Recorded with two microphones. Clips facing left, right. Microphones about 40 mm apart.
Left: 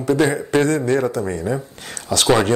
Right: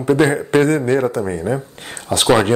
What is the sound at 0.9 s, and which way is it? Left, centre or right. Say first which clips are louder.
Speech: right 2 dB; centre.